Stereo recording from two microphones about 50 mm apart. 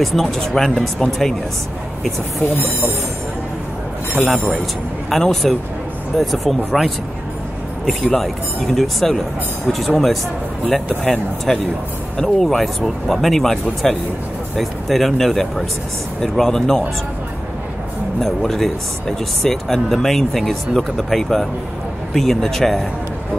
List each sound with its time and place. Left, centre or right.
0.0 s speech: centre
4.3 s speech: centre
8.1 s speech: centre
11.5 s speech: centre
18.2 s speech: centre